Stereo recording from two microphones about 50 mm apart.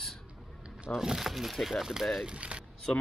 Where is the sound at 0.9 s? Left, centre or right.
Centre.